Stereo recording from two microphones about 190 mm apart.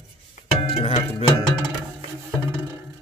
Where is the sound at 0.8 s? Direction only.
30° left (ahead or behind).